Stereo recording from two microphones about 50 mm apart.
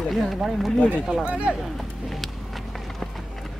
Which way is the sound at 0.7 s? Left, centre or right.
Left.